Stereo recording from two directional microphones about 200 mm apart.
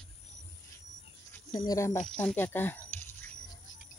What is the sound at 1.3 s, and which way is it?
Speech, 15° left (ahead or behind).